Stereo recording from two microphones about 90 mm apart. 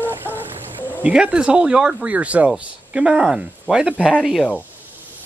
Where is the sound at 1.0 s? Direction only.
10° right (ahead or behind).